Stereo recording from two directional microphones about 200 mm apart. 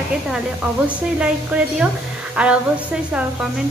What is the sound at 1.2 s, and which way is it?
A woman's voice, 5° right (ahead or behind).